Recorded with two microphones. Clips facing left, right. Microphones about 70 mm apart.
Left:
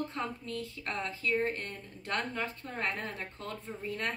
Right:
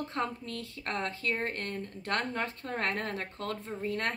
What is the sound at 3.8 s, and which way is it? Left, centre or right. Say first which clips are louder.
Speech: right 3 dB; right.